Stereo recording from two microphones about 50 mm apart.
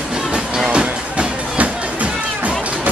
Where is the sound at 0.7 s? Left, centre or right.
Right.